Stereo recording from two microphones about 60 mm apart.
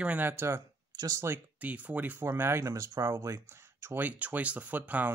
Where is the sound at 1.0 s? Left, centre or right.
Right.